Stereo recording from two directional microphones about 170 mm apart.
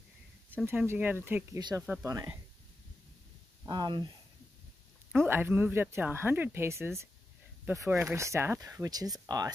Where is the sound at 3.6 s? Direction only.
25° right (ahead or behind).